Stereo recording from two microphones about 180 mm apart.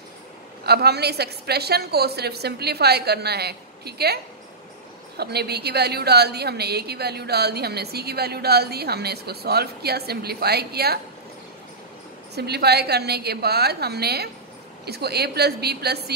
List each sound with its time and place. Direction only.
0.7 s a woman's voice: 65° right (ahead or behind)
12.4 s a woman's voice: 65° right (ahead or behind)